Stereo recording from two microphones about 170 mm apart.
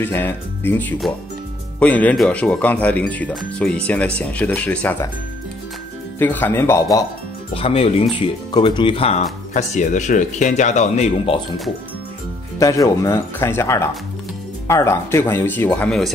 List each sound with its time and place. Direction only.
0.0 s speech: 10° left (ahead or behind)
6.1 s speech: 10° left (ahead or behind)
7.5 s speech: 35° left (ahead or behind)
9.5 s speech: 50° left (ahead or behind)
12.5 s speech: 20° left (ahead or behind)